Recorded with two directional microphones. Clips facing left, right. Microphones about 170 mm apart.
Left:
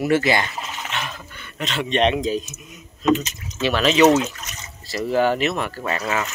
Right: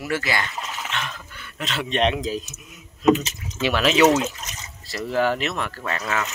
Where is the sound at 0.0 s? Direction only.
25° left (ahead or behind).